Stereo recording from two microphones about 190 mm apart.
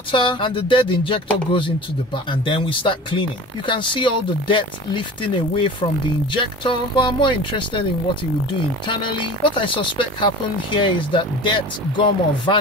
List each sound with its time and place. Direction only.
0.1 s a woman's voice: 25° left (ahead or behind)
2.4 s a woman's voice: 25° left (ahead or behind)